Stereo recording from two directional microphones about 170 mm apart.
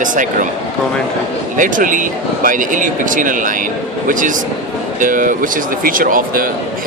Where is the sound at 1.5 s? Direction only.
50° right (ahead or behind).